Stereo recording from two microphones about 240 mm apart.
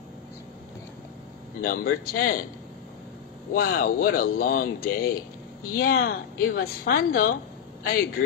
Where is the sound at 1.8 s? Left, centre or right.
Left.